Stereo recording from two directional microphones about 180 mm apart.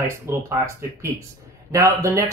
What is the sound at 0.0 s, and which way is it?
Speech, 15° right (ahead or behind).